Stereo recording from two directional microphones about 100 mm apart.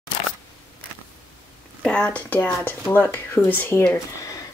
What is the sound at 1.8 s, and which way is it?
Speech, 10° left (ahead or behind).